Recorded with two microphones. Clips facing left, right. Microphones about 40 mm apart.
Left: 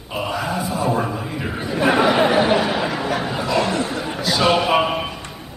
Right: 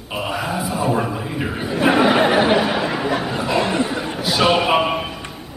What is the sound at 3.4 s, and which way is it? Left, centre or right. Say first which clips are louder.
A man's voice: even; right.